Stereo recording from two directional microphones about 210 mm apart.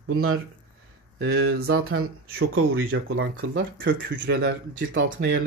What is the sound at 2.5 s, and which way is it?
Speech, 75° right (ahead or behind).